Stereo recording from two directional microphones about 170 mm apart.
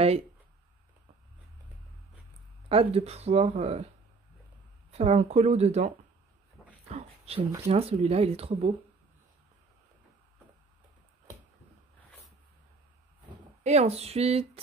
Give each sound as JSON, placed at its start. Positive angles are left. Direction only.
{"t": 2.7, "sound": "speech", "side_deg": -35}
{"t": 4.9, "sound": "speech", "side_deg": -40}
{"t": 6.9, "sound": "speech", "side_deg": -35}
{"t": 13.7, "sound": "speech", "side_deg": -40}